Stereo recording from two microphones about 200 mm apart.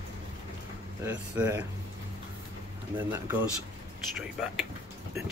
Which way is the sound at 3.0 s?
10° right (ahead or behind).